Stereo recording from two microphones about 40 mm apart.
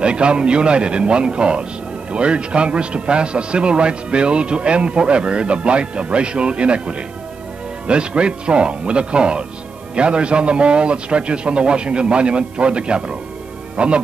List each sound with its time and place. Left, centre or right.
0.0 s a man's voice: right